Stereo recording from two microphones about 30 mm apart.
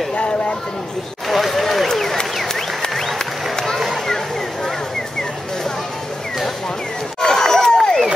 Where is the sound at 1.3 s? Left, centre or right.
Centre.